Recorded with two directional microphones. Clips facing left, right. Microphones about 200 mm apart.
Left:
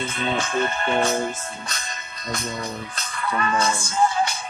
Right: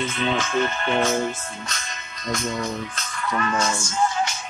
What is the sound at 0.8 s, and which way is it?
Speech, 40° left (ahead or behind).